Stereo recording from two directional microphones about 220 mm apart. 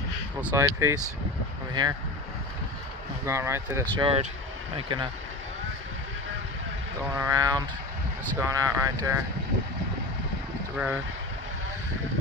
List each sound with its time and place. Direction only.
0.4 s speech: 10° right (ahead or behind)
3.3 s speech: 10° right (ahead or behind)
3.9 s speech: 25° right (ahead or behind)
7.2 s speech: 15° right (ahead or behind)